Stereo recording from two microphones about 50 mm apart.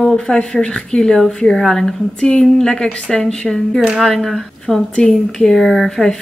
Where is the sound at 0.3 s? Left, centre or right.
Centre.